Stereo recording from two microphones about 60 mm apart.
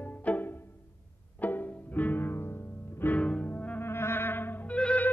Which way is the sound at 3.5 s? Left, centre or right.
Left.